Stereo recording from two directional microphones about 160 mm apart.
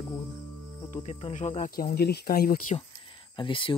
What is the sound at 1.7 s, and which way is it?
Speech, 75° left (ahead or behind).